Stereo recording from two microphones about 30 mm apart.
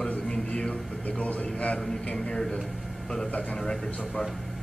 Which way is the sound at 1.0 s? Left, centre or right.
Left.